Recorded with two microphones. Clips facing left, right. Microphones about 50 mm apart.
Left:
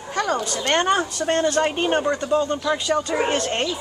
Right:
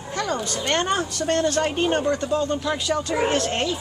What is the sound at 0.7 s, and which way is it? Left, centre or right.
Speech, centre.